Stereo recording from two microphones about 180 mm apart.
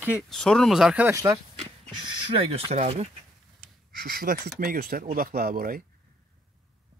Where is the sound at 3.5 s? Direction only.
55° right (ahead or behind).